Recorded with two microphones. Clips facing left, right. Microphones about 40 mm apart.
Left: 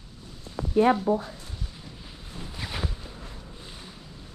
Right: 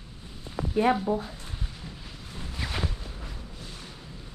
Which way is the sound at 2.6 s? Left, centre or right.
Centre.